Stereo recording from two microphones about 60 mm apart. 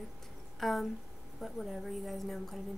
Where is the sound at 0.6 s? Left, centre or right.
Centre.